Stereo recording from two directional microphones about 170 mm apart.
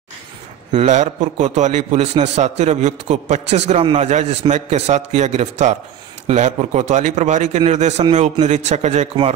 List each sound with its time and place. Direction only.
0.7 s a man's voice: 45° right (ahead or behind)